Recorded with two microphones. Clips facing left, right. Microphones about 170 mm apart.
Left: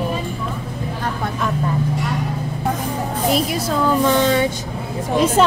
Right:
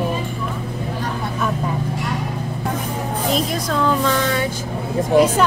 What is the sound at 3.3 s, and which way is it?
Speech, 5° left (ahead or behind).